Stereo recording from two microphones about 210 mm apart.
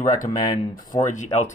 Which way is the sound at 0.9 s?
35° left (ahead or behind).